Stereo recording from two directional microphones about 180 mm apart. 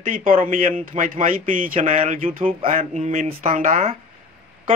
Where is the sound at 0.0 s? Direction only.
50° right (ahead or behind).